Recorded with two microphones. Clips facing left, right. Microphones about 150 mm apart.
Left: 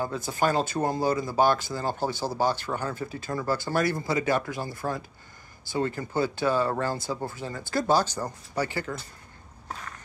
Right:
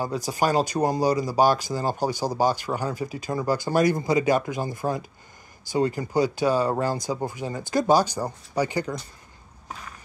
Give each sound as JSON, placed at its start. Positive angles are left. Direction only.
{"t": 0.3, "sound": "speech", "side_deg": -15}